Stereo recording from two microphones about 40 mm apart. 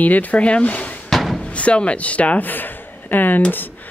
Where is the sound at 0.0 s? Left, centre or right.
Left.